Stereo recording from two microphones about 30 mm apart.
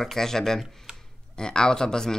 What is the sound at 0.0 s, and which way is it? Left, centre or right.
Speech, centre.